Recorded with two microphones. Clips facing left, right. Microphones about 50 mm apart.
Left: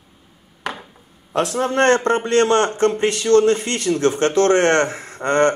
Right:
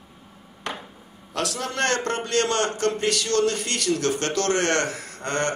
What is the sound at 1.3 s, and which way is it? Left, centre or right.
A man's voice, left.